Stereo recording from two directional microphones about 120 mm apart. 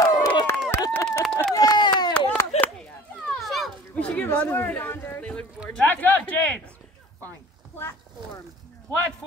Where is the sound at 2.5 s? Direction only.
60° left (ahead or behind).